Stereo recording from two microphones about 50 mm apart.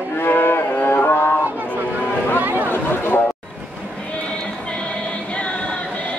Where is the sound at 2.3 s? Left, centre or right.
Right.